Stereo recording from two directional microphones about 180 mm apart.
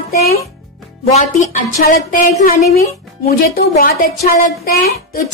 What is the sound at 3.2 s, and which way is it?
Speech, 55° left (ahead or behind).